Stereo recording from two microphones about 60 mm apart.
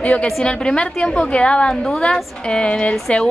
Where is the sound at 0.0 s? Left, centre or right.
Centre.